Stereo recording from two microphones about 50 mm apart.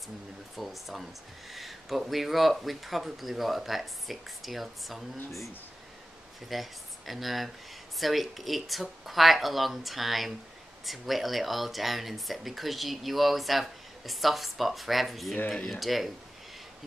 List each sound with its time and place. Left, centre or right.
0.6 s speech: centre
6.5 s speech: centre